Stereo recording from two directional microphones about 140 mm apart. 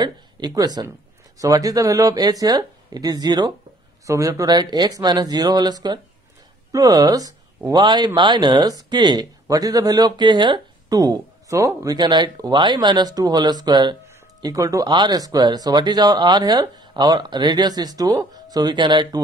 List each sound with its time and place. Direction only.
0.0 s speech: 30° right (ahead or behind)